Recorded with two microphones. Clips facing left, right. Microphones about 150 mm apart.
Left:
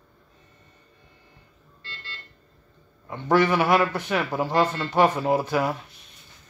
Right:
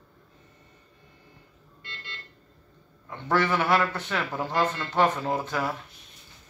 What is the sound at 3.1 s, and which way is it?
A man's voice, 15° left (ahead or behind).